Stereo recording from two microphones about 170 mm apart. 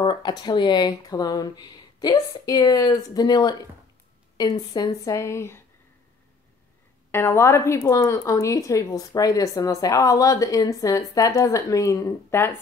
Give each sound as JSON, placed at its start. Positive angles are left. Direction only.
{"t": 0.0, "sound": "speech", "side_deg": 25}
{"t": 7.1, "sound": "speech", "side_deg": 15}